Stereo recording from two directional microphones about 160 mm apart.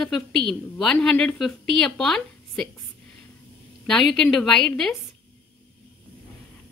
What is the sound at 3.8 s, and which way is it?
A woman's voice, centre (ahead or behind).